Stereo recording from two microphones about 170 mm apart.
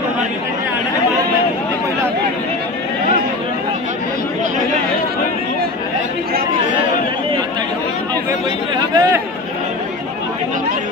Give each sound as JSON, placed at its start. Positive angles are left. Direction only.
{"t": 8.3, "sound": "chatter", "side_deg": -20}